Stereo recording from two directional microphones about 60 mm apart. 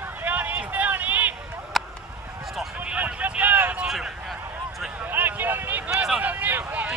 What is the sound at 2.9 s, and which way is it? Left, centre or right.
Vehicle, right.